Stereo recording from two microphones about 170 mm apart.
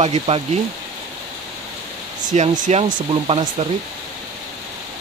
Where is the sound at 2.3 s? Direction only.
45° right (ahead or behind).